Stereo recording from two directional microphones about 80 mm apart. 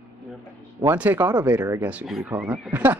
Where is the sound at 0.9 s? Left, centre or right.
Right.